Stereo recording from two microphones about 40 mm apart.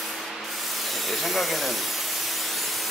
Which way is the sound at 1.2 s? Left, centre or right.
Centre.